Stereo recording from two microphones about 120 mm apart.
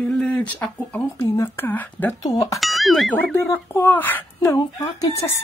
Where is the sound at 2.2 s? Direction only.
30° left (ahead or behind).